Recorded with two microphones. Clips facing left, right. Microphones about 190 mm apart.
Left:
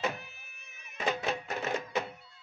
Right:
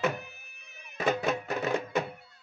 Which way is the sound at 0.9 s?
50° right (ahead or behind).